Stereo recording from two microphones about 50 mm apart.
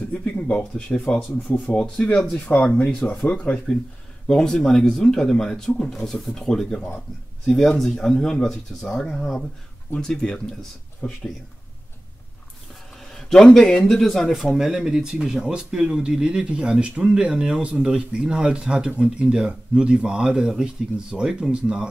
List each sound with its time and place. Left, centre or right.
0.1 s speech: left
4.3 s speech: centre
9.9 s speech: centre
12.9 s a sound: centre
13.8 s speech: centre